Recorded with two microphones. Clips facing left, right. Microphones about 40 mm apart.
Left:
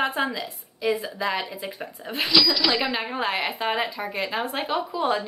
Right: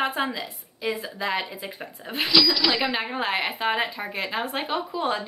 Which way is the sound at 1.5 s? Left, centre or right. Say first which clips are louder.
Left 2 dB; centre.